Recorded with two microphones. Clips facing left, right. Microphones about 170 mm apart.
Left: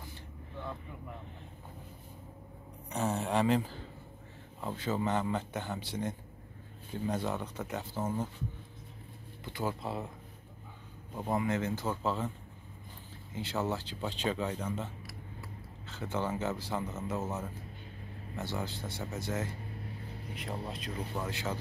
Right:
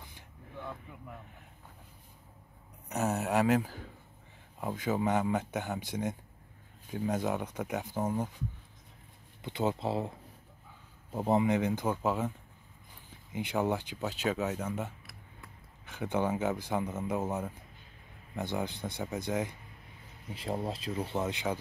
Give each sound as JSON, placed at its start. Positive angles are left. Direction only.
{"t": 2.9, "sound": "speech", "side_deg": -5}
{"t": 9.4, "sound": "speech", "side_deg": -20}
{"t": 11.1, "sound": "speech", "side_deg": -25}
{"t": 13.3, "sound": "speech", "side_deg": -15}
{"t": 20.3, "sound": "speech", "side_deg": -30}